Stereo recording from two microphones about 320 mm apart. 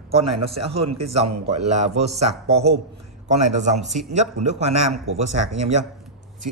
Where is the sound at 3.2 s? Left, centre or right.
Right.